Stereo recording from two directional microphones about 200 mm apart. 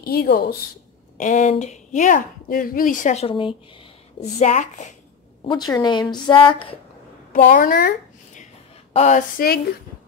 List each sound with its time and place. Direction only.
0.0 s speech: 50° left (ahead or behind)
1.1 s speech: 40° left (ahead or behind)
5.4 s a woman's voice: 20° left (ahead or behind)
7.3 s speech: 45° left (ahead or behind)
8.9 s a woman's voice: 35° left (ahead or behind)